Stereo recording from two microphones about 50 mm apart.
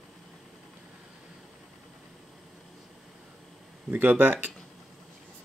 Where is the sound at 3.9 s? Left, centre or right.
Right.